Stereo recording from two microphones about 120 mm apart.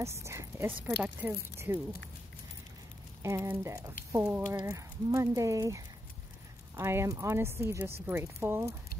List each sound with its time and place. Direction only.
0.0 s speech: 25° right (ahead or behind)
3.2 s speech: 25° right (ahead or behind)
6.8 s speech: 20° right (ahead or behind)